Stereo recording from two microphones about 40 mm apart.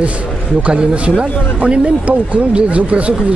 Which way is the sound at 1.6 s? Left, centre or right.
Right.